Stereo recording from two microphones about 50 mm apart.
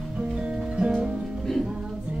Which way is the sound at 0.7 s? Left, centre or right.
Right.